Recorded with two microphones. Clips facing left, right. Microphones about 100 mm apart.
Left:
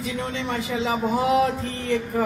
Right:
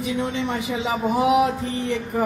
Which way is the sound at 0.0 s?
15° right (ahead or behind).